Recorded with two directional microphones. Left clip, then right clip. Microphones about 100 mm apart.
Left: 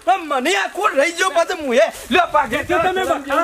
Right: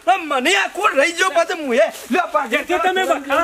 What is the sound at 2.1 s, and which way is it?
Speech, 40° left (ahead or behind).